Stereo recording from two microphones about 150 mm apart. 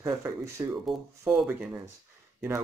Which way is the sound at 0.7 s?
5° right (ahead or behind).